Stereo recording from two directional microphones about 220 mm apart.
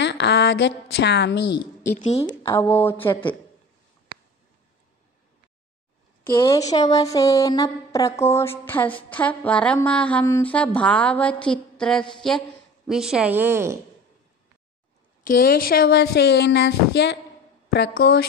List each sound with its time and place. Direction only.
0.0 s speech: 50° left (ahead or behind)
2.0 s a woman's voice: 30° left (ahead or behind)
2.2 s speech: 15° left (ahead or behind)
3.1 s a woman's voice: 20° left (ahead or behind)
6.3 s speech: 15° left (ahead or behind)
11.8 s a sound: 5° left (ahead or behind)
12.8 s a woman's voice: centre (ahead or behind)
15.2 s speech: 40° left (ahead or behind)